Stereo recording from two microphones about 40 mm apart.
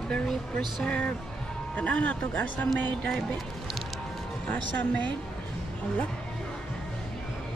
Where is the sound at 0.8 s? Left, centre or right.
Left.